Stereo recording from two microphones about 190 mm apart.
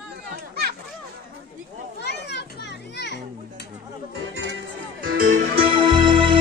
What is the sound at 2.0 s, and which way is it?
Children playing, 60° left (ahead or behind).